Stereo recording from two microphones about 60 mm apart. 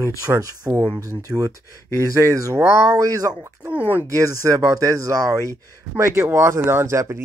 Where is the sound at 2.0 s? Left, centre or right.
Right.